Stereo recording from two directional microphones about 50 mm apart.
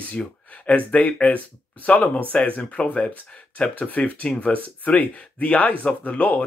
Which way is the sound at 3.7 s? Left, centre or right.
Left.